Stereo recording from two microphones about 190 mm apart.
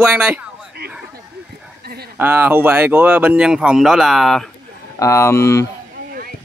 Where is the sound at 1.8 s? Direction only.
55° right (ahead or behind).